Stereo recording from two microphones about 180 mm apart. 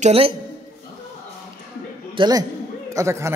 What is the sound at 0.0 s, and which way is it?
Speech, 30° right (ahead or behind).